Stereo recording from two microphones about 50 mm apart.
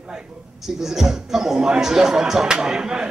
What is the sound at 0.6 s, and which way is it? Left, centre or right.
A man's voice, centre.